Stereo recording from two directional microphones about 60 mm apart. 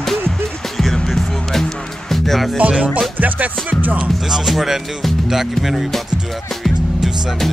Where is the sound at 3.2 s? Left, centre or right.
Right.